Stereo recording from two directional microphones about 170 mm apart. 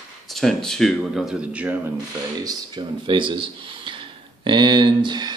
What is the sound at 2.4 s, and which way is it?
Speech, 25° right (ahead or behind).